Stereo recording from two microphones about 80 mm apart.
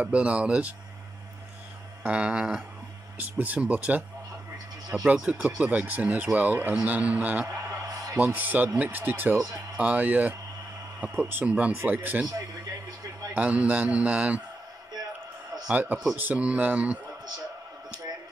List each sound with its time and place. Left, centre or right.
0.0 s speech: centre
2.0 s speech: centre
3.2 s speech: right
5.0 s speech: centre
7.5 s a sound: right
8.2 s speech: right
13.3 s speech: centre
15.7 s speech: centre